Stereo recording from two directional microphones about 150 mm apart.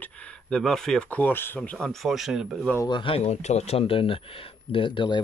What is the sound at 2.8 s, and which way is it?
Speech, 35° left (ahead or behind).